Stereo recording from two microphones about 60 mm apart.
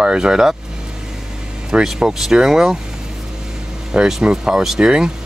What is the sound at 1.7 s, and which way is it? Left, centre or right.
Speech, centre.